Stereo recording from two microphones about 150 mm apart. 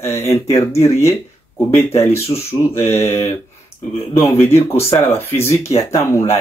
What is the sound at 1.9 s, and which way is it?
Speech, 15° left (ahead or behind).